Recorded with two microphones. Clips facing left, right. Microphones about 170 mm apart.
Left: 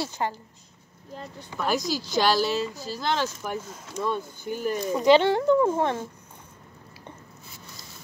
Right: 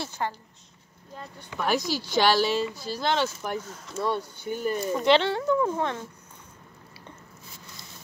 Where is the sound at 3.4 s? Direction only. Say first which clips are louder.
Even; 10° left (ahead or behind); by 6.0 s 25° left (ahead or behind).